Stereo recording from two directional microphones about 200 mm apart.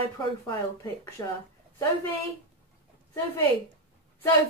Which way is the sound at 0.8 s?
15° left (ahead or behind).